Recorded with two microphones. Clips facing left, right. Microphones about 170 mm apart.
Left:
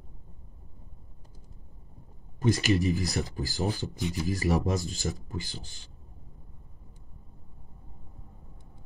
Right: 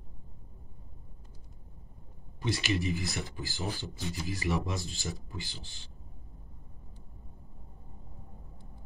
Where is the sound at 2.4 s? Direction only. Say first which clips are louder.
Left 6 dB; 40° left (ahead or behind).